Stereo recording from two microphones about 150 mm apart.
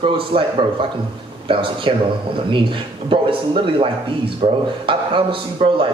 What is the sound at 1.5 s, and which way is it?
Speech, 35° right (ahead or behind).